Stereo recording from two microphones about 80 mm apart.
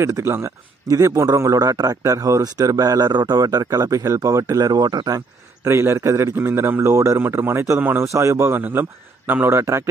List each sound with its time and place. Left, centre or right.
0.0 s a man's voice: right
3.1 s speech: right
5.6 s a man's voice: right
8.5 s a man's voice: right